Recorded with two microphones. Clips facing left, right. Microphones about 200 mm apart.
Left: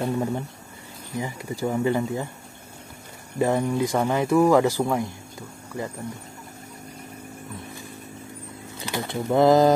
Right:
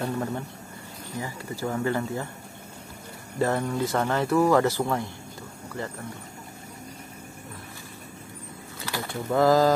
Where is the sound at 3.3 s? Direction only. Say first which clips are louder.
Left 3 dB; 15° left (ahead or behind).